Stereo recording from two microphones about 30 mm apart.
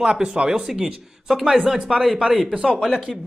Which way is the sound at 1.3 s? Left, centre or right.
Centre.